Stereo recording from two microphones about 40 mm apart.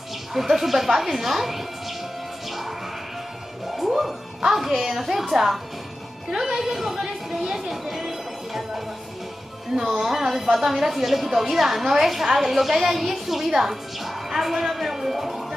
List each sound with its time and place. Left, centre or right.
0.3 s speech: centre
3.6 s music: centre
4.4 s a woman's voice: centre